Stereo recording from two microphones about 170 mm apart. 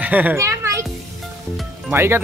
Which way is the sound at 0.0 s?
10° right (ahead or behind).